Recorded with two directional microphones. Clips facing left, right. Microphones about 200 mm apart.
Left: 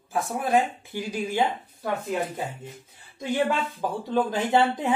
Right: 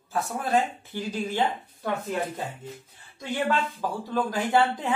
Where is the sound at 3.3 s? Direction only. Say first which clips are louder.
Left 1 dB; 20° left (ahead or behind).